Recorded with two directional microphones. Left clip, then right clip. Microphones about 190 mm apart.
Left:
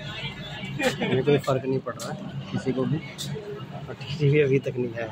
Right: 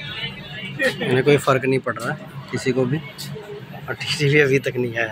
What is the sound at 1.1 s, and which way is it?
Speech, 15° right (ahead or behind).